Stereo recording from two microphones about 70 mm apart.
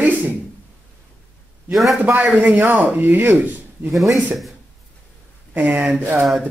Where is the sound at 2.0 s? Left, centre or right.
Right.